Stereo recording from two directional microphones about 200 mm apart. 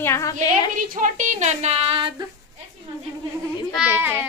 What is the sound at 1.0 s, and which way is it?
A woman's voice, 40° right (ahead or behind).